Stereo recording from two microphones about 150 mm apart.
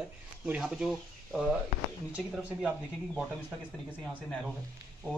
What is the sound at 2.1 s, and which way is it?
Speech, 5° right (ahead or behind).